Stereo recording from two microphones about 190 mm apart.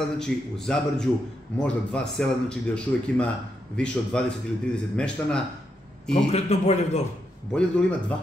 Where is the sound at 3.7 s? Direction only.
5° left (ahead or behind).